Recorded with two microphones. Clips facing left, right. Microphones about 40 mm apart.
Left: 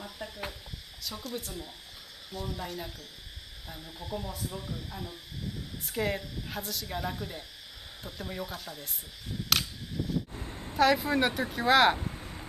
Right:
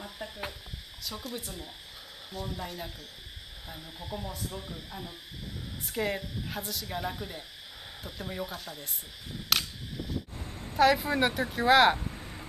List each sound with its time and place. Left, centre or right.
0.0 s cricket: centre
1.0 s a woman's voice: centre
9.5 s camera: centre
10.0 s a sound: right
10.8 s speech: centre